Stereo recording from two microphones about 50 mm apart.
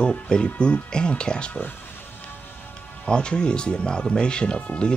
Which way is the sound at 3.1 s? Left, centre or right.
Centre.